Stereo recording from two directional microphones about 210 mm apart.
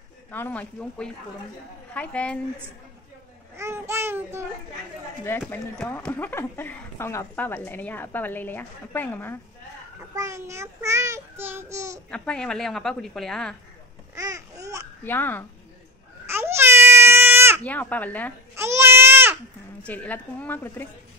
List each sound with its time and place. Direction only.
0.3 s a woman's voice: 5° left (ahead or behind)
3.5 s babbling: 15° right (ahead or behind)
5.5 s a woman's voice: 10° left (ahead or behind)
9.9 s child singing: 15° right (ahead or behind)
12.1 s a woman's voice: 5° left (ahead or behind)
14.1 s babbling: 15° right (ahead or behind)
15.0 s a woman's voice: 10° left (ahead or behind)
16.3 s baby cry: 10° right (ahead or behind)
17.6 s a woman's voice: 5° left (ahead or behind)
18.6 s baby cry: 10° right (ahead or behind)
19.8 s a woman's voice: 5° left (ahead or behind)